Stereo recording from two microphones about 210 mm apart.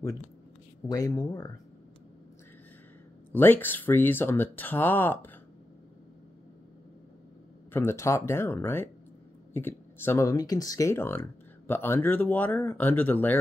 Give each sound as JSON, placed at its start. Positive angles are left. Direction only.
{"t": 0.8, "sound": "speech", "side_deg": 15}
{"t": 3.3, "sound": "speech", "side_deg": 10}
{"t": 7.7, "sound": "speech", "side_deg": 10}